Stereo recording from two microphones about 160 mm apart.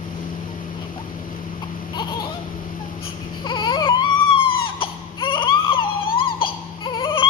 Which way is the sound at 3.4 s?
25° left (ahead or behind).